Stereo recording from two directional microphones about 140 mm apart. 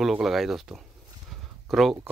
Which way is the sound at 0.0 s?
Centre (ahead or behind).